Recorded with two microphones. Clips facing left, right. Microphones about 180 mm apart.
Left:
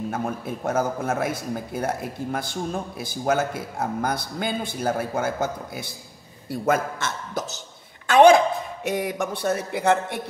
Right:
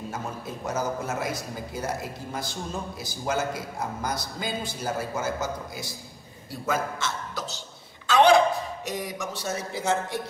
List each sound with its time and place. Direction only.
0.1 s a man's voice: 55° left (ahead or behind)
8.1 s a sound: 50° left (ahead or behind)
8.8 s a man's voice: 55° left (ahead or behind)